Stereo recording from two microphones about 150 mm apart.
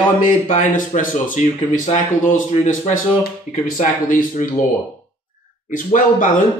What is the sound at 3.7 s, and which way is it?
Speech, 60° left (ahead or behind).